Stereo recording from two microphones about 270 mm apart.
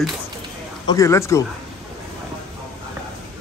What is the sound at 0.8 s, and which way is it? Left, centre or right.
Speech, centre.